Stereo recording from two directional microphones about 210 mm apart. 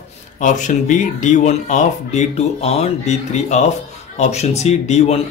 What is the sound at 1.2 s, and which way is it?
Speech, 35° left (ahead or behind).